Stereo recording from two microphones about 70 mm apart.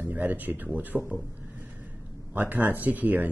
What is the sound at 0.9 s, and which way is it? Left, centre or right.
Speech, centre.